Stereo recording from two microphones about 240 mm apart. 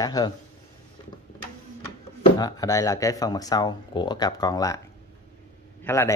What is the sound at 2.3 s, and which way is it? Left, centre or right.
Speech, centre.